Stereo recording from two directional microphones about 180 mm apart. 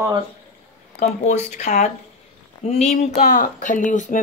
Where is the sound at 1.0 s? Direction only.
40° left (ahead or behind).